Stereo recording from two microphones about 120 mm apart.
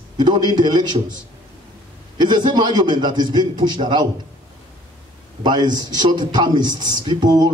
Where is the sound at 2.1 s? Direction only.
40° right (ahead or behind).